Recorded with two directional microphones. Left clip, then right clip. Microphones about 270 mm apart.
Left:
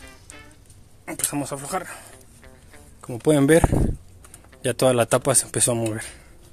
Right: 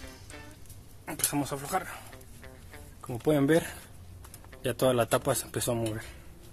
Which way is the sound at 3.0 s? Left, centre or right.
Left.